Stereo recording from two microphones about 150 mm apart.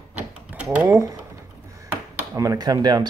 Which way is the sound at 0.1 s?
10° right (ahead or behind).